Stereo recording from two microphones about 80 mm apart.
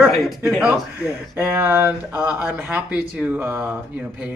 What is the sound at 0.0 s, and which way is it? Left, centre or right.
Speech, centre.